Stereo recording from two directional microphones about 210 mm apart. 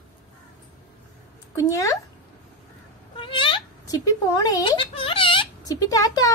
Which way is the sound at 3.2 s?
25° left (ahead or behind).